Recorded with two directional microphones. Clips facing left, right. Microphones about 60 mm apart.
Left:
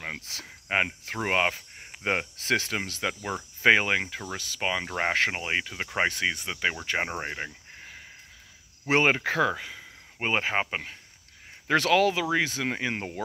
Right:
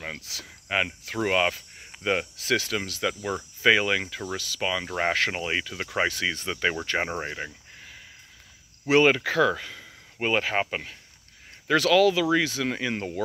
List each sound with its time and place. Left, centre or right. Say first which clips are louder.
0.2 s cricket: even; left
2.0 s speech: right 2 dB; left; by 10.2 s centre
10.2 s speech: right 2 dB; left